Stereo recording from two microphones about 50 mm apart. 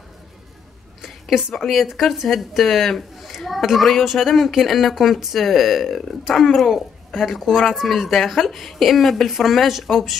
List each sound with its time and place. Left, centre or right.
1.5 s speech: centre